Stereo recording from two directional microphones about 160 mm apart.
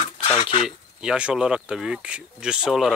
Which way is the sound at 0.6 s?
5° right (ahead or behind).